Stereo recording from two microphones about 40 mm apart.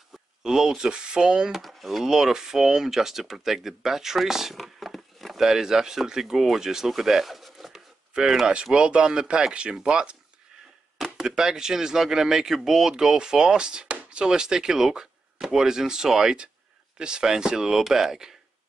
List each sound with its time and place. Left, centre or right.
0.4 s speech: centre
1.6 s speech: centre
2.0 s speech: centre
5.4 s speech: centre
6.9 s a sound: centre
8.1 s speech: centre
11.1 s speech: centre